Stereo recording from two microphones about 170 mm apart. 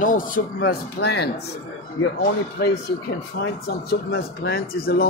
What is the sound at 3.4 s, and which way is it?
Speech, 70° left (ahead or behind).